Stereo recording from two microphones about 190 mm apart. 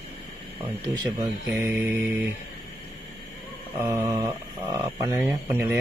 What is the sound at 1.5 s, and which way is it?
Speech, 10° right (ahead or behind).